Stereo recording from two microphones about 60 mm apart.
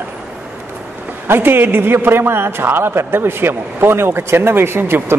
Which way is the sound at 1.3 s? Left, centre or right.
Right.